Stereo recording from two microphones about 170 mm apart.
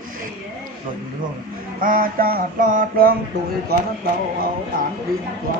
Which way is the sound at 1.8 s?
55° right (ahead or behind).